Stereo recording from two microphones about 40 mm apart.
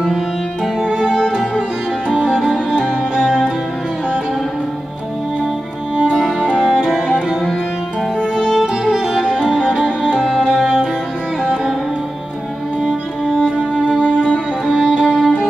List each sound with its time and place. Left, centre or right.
0.7 s music: centre
6.4 s music: centre
8.5 s music: centre
13.6 s music: centre